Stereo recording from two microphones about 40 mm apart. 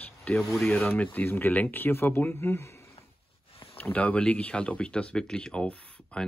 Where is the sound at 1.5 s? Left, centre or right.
Left.